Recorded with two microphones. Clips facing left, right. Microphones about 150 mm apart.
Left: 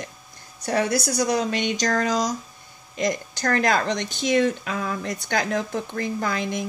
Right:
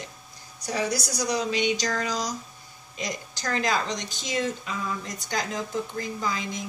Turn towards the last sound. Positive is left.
turn(degrees=65)  # may be behind; listen again after turning